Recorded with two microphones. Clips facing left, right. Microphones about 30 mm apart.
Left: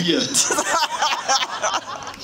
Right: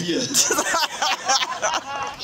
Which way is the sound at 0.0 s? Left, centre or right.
Left.